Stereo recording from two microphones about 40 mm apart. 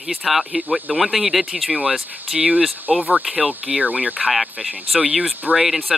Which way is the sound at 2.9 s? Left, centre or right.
Centre.